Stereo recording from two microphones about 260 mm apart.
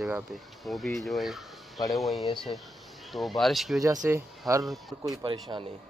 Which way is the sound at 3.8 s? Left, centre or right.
Centre.